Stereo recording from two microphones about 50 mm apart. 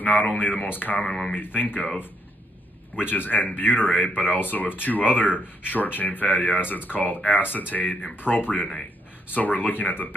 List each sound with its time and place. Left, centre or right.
0.0 s speech: left
1.0 s speech: centre
1.3 s speech: left
3.0 s speech: left